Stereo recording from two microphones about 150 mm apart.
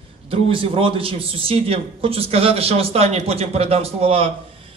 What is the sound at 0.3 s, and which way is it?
Speech, 40° right (ahead or behind).